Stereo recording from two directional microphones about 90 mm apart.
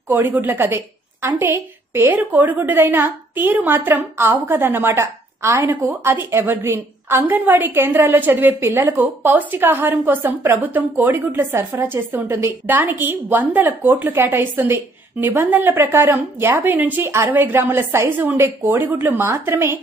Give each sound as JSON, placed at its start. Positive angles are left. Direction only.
{"t": 0.1, "sound": "a woman's voice", "side_deg": -20}
{"t": 8.9, "sound": "a woman's voice", "side_deg": -20}